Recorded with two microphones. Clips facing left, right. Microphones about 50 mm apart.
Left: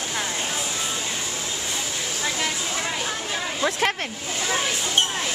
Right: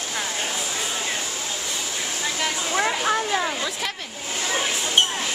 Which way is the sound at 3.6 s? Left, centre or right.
Left.